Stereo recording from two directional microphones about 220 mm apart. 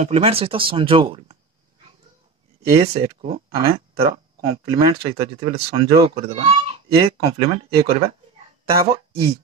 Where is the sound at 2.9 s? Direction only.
30° right (ahead or behind).